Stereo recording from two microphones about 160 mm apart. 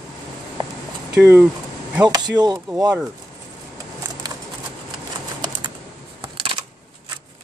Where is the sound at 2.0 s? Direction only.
25° right (ahead or behind).